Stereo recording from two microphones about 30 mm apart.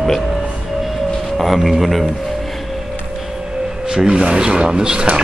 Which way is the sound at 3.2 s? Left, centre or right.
Centre.